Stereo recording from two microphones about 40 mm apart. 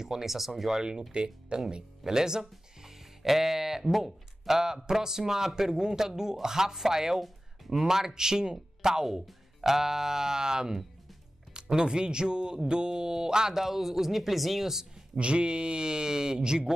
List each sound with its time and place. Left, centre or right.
0.0 s speech: centre
15.1 s speech: right